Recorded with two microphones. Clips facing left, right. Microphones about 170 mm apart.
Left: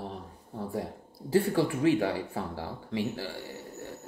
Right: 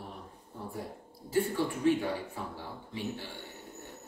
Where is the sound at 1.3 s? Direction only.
90° left.